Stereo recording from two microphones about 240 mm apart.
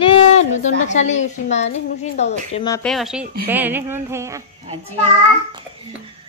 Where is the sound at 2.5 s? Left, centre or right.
Centre.